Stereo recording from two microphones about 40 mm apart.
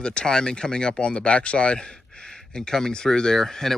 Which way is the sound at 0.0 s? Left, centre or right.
Left.